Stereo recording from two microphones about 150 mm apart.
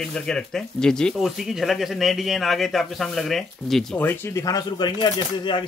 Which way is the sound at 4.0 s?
15° left (ahead or behind).